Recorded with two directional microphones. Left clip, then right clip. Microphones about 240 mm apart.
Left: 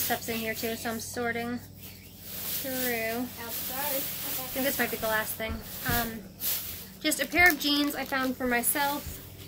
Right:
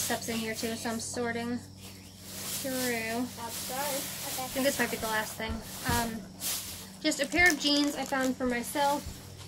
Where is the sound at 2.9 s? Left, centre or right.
Centre.